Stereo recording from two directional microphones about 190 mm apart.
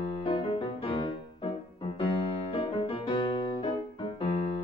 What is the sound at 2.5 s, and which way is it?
Music, 25° left (ahead or behind).